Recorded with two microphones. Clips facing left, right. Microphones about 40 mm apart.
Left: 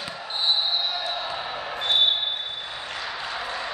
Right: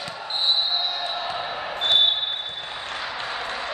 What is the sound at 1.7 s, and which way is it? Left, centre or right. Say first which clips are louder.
Basketball bounce: right 3 dB; right.